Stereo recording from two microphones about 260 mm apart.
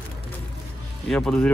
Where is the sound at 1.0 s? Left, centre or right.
Centre.